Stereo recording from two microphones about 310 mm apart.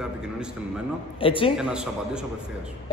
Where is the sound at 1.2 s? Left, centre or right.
Centre.